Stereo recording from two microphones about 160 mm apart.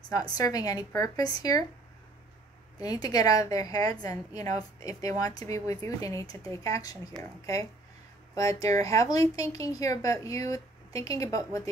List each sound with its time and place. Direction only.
0.2 s speech: 25° left (ahead or behind)
2.8 s speech: 20° left (ahead or behind)
8.4 s speech: 20° left (ahead or behind)